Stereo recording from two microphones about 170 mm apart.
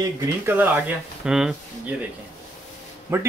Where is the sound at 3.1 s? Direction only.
15° right (ahead or behind).